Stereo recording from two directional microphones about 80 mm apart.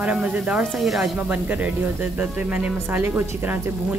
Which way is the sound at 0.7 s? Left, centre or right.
Centre.